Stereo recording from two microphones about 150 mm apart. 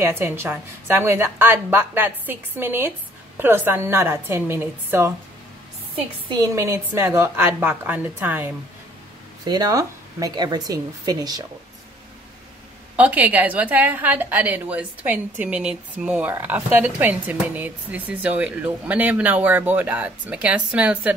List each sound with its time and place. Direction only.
0.0 s a woman's voice: 15° right (ahead or behind)
6.2 s a woman's voice: 25° right (ahead or behind)
9.4 s speech: 25° right (ahead or behind)
12.9 s a woman's voice: 10° right (ahead or behind)